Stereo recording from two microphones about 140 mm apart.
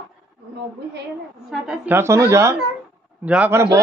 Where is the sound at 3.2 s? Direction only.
10° right (ahead or behind).